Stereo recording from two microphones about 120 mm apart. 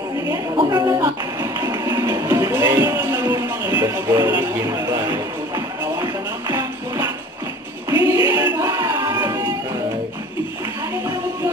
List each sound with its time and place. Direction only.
0.6 s music: 35° right (ahead or behind)
7.9 s music: 30° right (ahead or behind)